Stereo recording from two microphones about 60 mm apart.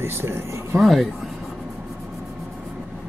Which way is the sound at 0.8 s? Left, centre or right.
Centre.